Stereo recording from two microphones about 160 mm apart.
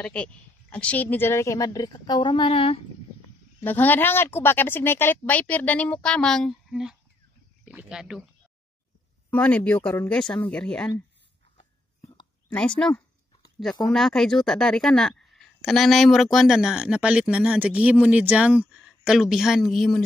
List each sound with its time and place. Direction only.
0.0 s speech: 5° left (ahead or behind); by 2.8 s 35° left (ahead or behind)
3.6 s a woman's voice: 10° left (ahead or behind); by 8.2 s 5° right (ahead or behind)
9.3 s speech: 10° left (ahead or behind)
12.0 s whispering: 30° left (ahead or behind)
12.4 s a woman's voice: 5° left (ahead or behind)